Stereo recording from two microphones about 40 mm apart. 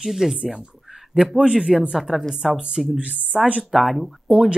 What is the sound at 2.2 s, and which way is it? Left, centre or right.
Speech, centre.